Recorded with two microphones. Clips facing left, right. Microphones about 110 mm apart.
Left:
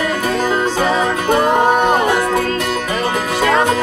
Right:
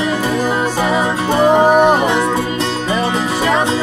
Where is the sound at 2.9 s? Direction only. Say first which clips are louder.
Right 3 dB; 25° right (ahead or behind).